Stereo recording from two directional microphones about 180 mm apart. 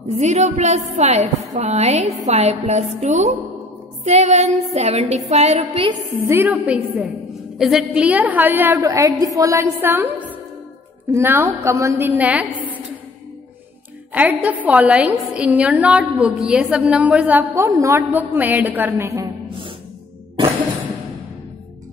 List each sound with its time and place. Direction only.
0.1 s a woman's voice: 40° right (ahead or behind)
6.2 s a woman's voice: 10° right (ahead or behind)
14.1 s a woman's voice: 10° right (ahead or behind)